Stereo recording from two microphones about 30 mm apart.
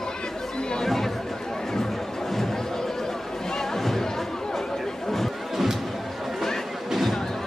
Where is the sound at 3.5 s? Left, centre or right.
Centre.